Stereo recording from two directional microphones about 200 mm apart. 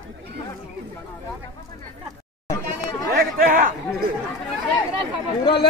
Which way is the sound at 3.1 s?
45° right (ahead or behind).